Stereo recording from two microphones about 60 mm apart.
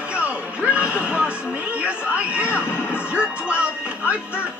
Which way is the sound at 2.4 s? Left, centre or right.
Left.